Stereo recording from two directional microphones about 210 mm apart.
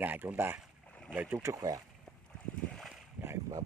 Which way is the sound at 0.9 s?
5° left (ahead or behind).